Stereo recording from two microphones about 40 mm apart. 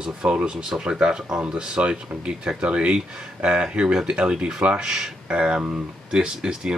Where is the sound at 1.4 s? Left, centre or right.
Right; by 5.1 s centre.